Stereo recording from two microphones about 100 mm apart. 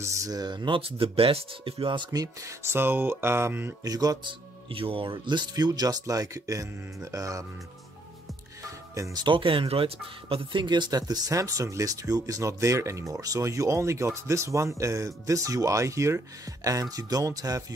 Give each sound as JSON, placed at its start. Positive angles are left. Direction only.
{"t": 0.0, "sound": "speech", "side_deg": -35}
{"t": 2.0, "sound": "speech", "side_deg": -30}
{"t": 3.8, "sound": "speech", "side_deg": -40}
{"t": 4.2, "sound": "speech", "side_deg": -60}
{"t": 8.9, "sound": "speech", "side_deg": -30}
{"t": 9.2, "sound": "speech", "side_deg": -60}